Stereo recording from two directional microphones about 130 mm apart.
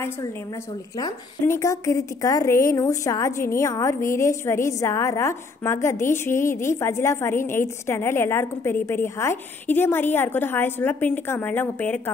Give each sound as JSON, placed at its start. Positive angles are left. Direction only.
{"t": 0.9, "sound": "a woman's voice", "side_deg": 25}